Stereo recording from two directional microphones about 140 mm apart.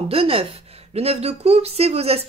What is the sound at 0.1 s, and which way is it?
Speech, 45° right (ahead or behind).